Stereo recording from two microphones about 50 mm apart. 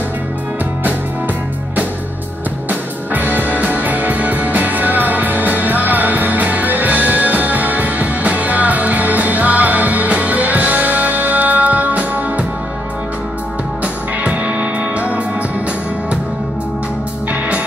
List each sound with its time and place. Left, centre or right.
2.7 s music: right
14.2 s music: right